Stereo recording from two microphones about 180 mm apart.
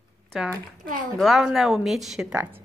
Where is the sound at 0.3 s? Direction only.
Centre (ahead or behind).